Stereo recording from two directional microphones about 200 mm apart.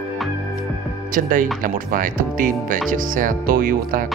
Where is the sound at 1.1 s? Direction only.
40° right (ahead or behind).